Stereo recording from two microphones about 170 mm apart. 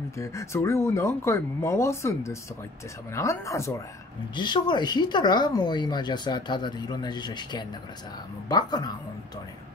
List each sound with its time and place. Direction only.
0.2 s speech: 15° left (ahead or behind)